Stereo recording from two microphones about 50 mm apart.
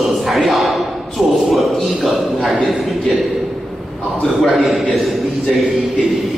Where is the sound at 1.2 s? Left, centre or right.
Right.